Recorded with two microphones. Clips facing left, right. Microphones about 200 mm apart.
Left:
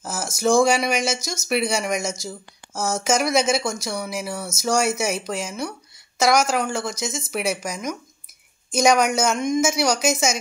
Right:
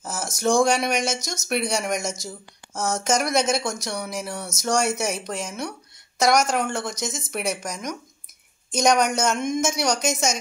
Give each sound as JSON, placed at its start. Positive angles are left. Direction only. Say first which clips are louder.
{"t": 0.0, "sound": "speech", "louder": "left 2 dB", "side_deg": 0}